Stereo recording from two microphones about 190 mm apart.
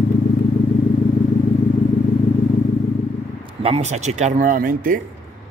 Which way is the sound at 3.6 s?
35° right (ahead or behind).